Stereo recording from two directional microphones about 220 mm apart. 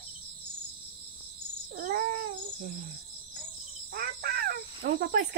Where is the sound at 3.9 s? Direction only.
45° right (ahead or behind).